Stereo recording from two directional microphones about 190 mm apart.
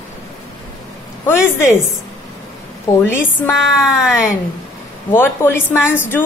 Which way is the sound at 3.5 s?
Centre (ahead or behind).